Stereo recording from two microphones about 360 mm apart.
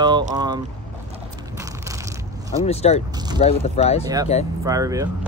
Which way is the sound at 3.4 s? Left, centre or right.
Centre.